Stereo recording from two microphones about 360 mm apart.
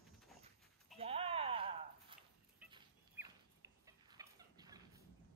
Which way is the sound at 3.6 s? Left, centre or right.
Centre.